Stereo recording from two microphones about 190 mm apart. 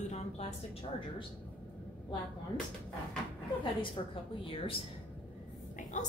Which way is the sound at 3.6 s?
25° left (ahead or behind).